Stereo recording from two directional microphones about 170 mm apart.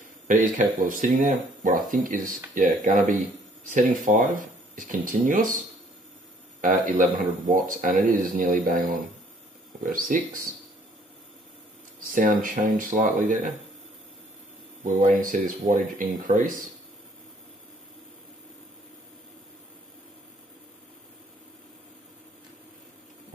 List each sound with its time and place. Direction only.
0.3 s speech: 50° right (ahead or behind)
6.6 s speech: 50° right (ahead or behind)
12.1 s speech: 50° right (ahead or behind)
14.9 s speech: 50° right (ahead or behind)